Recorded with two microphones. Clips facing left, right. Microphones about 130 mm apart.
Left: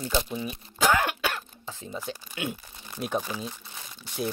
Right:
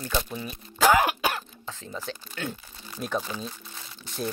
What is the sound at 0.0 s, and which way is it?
Speech, 20° left (ahead or behind).